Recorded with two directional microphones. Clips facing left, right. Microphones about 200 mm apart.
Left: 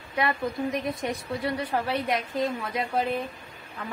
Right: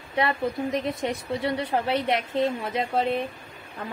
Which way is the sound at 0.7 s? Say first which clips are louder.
Right 2 dB; 25° right (ahead or behind).